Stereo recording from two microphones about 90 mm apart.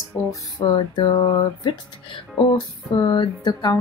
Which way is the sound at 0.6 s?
60° left (ahead or behind).